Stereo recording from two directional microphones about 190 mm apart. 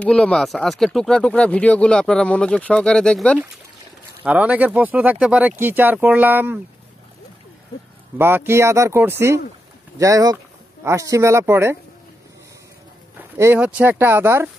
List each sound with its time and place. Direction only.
0.0 s speech: 5° left (ahead or behind)
4.2 s speech: 10° right (ahead or behind)
8.2 s speech: 10° right (ahead or behind)
13.4 s speech: 10° right (ahead or behind)